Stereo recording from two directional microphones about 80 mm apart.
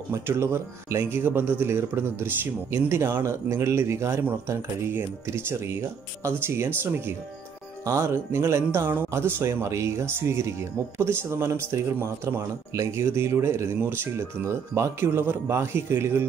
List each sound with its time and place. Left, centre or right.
0.1 s speech: right